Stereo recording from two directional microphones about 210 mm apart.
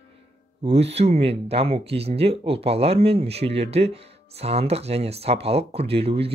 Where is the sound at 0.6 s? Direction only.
30° right (ahead or behind).